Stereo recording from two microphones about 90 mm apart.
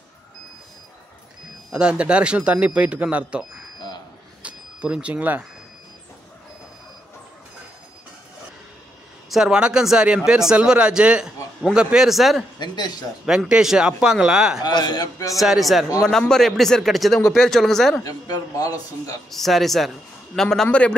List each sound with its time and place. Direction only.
1.7 s speech: 10° right (ahead or behind)
4.4 s a sound: 10° right (ahead or behind)
9.3 s a man's voice: 10° right (ahead or behind)
12.5 s a man's voice: 50° left (ahead or behind)
13.2 s speech: 5° right (ahead or behind)
14.6 s a man's voice: 50° left (ahead or behind)
15.3 s a man's voice: centre (ahead or behind)
18.0 s a man's voice: 45° left (ahead or behind)
19.3 s a man's voice: centre (ahead or behind)